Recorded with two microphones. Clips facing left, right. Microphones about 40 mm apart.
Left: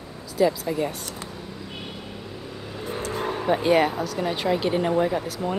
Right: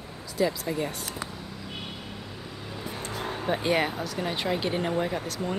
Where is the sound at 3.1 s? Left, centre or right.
Left.